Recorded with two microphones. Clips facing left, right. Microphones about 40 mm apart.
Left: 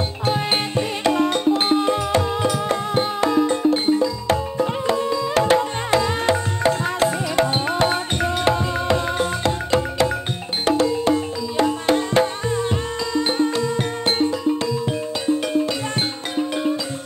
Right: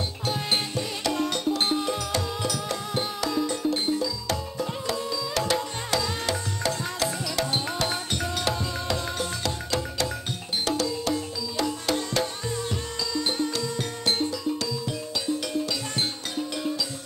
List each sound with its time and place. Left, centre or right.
0.2 s music: left